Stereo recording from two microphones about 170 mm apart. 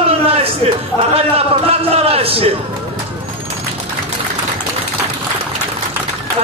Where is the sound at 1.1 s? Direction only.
35° right (ahead or behind).